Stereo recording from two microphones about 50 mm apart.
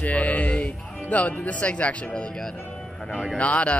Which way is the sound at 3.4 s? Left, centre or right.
Left.